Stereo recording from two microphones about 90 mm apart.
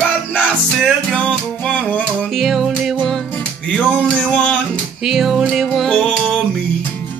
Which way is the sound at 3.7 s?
10° left (ahead or behind).